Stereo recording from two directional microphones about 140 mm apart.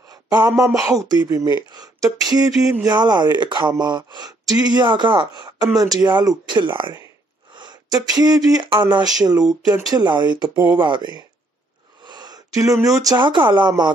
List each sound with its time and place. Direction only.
0.1 s a sound: 30° right (ahead or behind)
0.5 s speech: 20° right (ahead or behind)
1.7 s a sound: 30° right (ahead or behind)
2.8 s speech: 30° right (ahead or behind)
9.3 s speech: 5° right (ahead or behind)
9.9 s speech: 30° right (ahead or behind)